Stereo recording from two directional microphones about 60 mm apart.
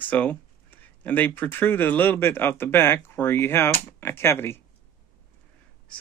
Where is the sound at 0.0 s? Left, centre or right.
Left.